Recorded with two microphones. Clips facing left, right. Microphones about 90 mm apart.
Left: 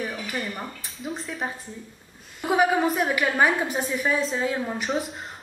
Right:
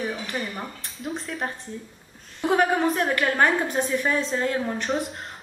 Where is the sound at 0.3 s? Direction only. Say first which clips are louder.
Even; centre (ahead or behind).